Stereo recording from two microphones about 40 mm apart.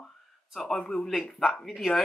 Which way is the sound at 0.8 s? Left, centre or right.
Left.